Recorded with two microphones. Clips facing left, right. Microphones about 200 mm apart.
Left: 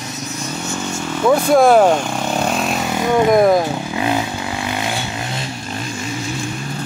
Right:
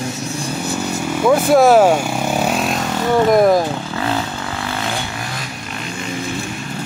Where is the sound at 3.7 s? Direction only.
15° left (ahead or behind).